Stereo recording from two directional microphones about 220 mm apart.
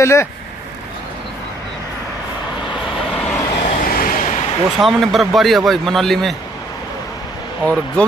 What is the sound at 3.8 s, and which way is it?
Vehicle, 40° left (ahead or behind).